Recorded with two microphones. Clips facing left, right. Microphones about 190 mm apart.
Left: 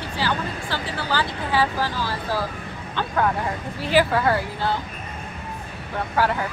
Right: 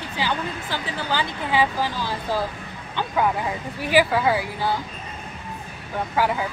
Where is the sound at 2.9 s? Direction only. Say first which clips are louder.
Even; 10° right (ahead or behind).